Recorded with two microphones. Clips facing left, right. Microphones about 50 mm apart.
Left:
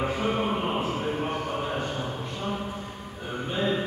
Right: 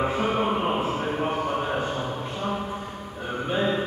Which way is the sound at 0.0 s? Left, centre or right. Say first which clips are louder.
Right 3 dB; centre.